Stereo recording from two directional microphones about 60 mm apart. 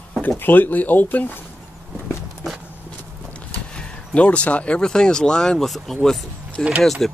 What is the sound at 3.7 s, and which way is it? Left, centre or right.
Speech, centre.